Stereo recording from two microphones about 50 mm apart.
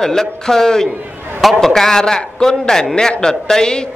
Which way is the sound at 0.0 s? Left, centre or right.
Centre.